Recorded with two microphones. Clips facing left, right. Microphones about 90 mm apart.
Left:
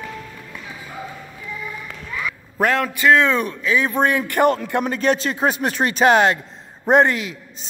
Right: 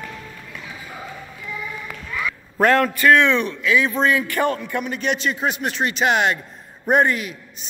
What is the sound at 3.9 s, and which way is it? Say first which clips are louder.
Speech: left 1 dB; 55° left (ahead or behind).